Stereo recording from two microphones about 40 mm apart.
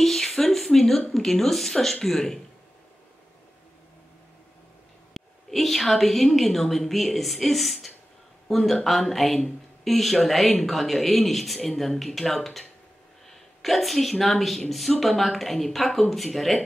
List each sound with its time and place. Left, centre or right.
0.0 s a man's voice: centre
5.1 s a woman's voice: centre